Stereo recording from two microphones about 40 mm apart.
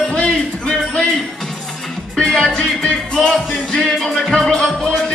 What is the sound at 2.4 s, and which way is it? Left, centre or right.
Music, centre.